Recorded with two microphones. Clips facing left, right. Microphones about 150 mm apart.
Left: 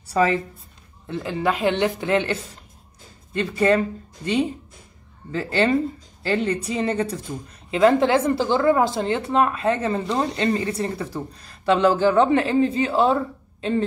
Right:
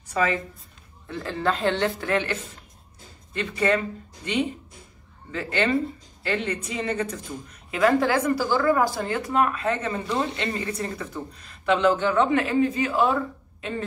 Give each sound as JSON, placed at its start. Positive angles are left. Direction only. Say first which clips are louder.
{"t": 0.0, "sound": "a woman's voice", "louder": "left 5 dB", "side_deg": 35}
{"t": 1.2, "sound": "speech", "louder": "left 2 dB", "side_deg": 15}
{"t": 5.3, "sound": "a woman's voice", "louder": "left 4 dB", "side_deg": 35}